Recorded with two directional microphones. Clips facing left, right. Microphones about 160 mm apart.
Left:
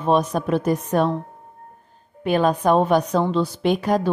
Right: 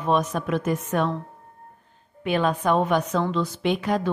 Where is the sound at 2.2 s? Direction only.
40° left (ahead or behind).